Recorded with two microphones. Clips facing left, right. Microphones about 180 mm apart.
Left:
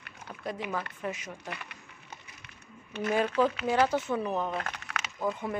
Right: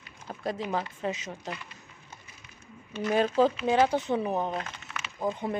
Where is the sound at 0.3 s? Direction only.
35° right (ahead or behind).